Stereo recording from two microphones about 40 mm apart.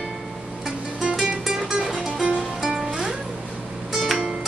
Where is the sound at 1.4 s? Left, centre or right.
Centre.